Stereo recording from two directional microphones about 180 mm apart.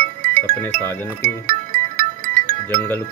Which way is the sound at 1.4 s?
50° right (ahead or behind).